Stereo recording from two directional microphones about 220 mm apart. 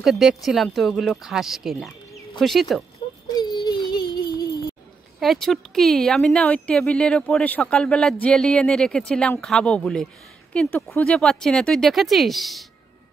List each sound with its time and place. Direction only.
0.0 s speech: centre (ahead or behind)
3.3 s a sound: 20° left (ahead or behind)
5.2 s speech: centre (ahead or behind)